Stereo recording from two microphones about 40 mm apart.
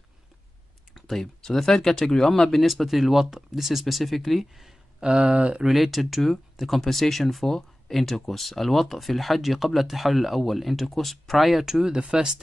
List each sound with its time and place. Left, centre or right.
0.9 s speech: centre
2.7 s speech: centre
5.0 s speech: right
5.6 s speech: centre
11.6 s speech: centre